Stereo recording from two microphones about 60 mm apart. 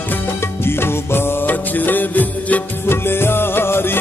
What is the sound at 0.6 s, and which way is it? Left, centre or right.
Music, left.